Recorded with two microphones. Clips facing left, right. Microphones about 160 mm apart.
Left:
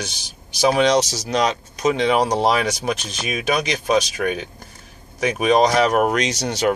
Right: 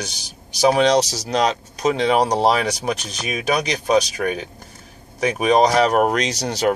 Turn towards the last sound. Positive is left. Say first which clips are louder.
# even
turn(degrees=-35)  # may be behind; listen again after turning